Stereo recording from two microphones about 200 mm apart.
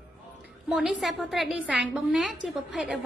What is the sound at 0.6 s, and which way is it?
A woman's voice, 5° right (ahead or behind).